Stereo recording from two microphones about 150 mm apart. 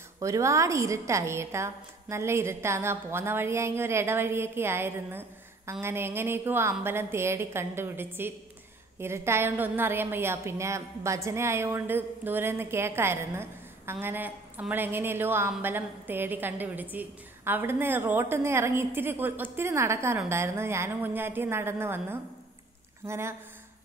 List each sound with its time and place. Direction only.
0.2 s a woman's voice: 20° right (ahead or behind)